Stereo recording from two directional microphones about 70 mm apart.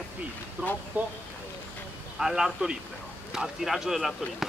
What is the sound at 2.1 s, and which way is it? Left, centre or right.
Speech, centre.